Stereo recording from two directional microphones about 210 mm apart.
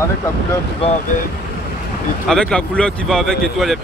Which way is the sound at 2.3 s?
5° left (ahead or behind).